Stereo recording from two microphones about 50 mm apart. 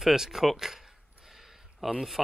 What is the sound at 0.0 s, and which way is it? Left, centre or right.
Speech, centre.